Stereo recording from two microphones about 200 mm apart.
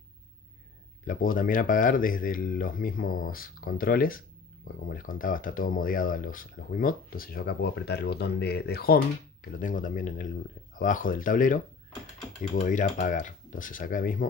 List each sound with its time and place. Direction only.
1.0 s speech: 45° left (ahead or behind)